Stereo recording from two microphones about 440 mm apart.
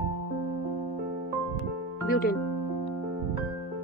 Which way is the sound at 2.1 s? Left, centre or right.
Centre.